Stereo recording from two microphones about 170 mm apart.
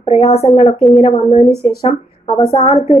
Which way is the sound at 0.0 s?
40° left (ahead or behind).